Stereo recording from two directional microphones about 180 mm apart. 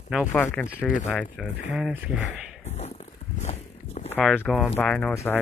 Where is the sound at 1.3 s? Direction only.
Centre (ahead or behind).